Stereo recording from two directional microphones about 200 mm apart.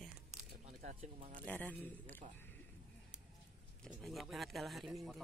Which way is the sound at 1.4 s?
10° left (ahead or behind).